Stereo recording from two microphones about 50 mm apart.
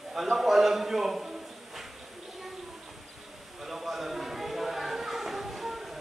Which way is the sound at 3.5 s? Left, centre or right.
Centre.